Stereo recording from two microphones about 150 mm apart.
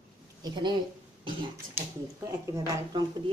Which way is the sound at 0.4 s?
30° right (ahead or behind).